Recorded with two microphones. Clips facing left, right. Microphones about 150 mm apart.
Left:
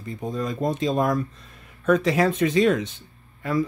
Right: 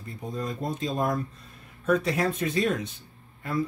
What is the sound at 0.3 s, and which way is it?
Speech, 90° left.